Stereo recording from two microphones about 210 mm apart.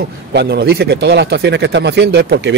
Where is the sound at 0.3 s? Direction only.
50° right (ahead or behind).